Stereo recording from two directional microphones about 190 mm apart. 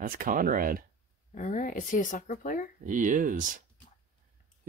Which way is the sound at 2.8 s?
45° right (ahead or behind).